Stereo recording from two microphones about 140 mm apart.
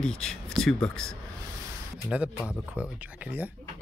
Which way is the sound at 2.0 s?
5° right (ahead or behind).